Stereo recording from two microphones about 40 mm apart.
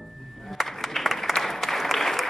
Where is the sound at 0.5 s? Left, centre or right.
Centre.